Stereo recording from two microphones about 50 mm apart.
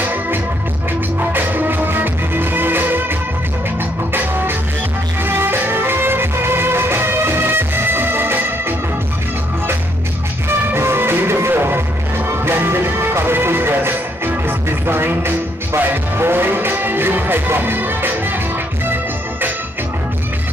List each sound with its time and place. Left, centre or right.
0.0 s music: right
4.1 s music: right
10.7 s music: right